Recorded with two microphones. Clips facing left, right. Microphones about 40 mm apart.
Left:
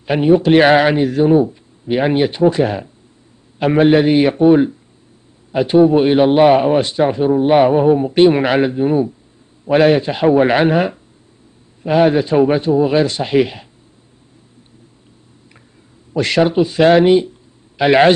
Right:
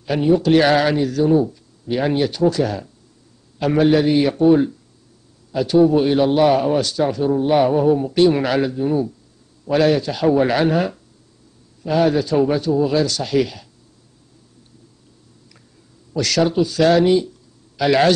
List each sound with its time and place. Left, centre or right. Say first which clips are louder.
0.0 s a man's voice: left 4 dB; left
16.1 s a man's voice: left 4 dB; left